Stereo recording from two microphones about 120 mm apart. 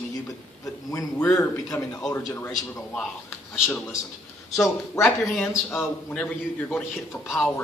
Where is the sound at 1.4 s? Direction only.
30° left (ahead or behind).